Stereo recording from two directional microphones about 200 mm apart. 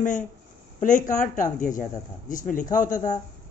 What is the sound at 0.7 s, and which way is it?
A woman's voice, 40° left (ahead or behind).